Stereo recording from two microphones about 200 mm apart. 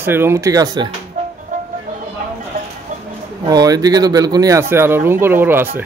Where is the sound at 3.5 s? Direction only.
20° right (ahead or behind).